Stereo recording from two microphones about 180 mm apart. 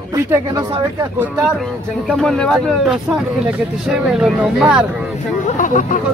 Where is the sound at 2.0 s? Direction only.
5° left (ahead or behind).